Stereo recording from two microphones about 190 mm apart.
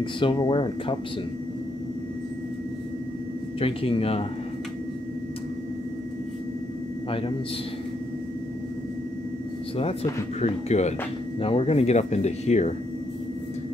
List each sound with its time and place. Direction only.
0.0 s speech: 25° left (ahead or behind)
3.5 s speech: 30° left (ahead or behind)
7.1 s a man's voice: 30° left (ahead or behind)
10.4 s speech: 35° left (ahead or behind)